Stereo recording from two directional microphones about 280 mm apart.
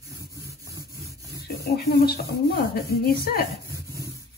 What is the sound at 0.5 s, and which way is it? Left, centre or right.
Rub, centre.